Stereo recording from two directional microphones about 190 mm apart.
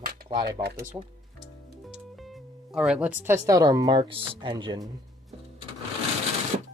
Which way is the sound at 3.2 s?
15° right (ahead or behind).